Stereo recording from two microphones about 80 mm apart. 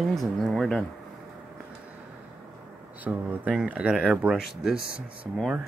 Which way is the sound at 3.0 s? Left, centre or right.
Centre.